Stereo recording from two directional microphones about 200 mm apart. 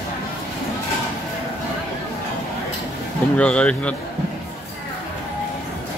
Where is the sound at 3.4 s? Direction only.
5° left (ahead or behind).